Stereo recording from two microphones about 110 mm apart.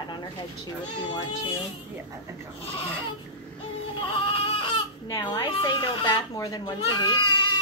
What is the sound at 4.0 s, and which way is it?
Baby cry, 50° left (ahead or behind).